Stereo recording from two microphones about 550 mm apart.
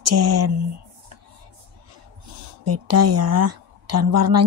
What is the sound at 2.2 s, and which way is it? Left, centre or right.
A woman's voice, right.